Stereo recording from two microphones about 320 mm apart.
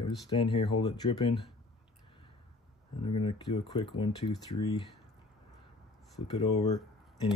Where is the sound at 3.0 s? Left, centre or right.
Centre.